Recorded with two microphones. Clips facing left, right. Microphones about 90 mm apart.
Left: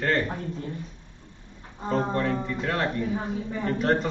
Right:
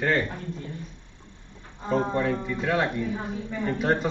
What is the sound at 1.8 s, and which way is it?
Speech, 5° right (ahead or behind).